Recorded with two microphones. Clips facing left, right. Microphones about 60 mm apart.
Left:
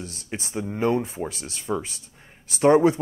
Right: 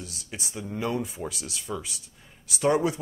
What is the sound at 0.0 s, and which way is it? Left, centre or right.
Speech, left.